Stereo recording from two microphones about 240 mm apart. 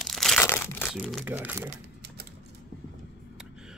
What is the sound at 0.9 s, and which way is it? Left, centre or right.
Speech, centre.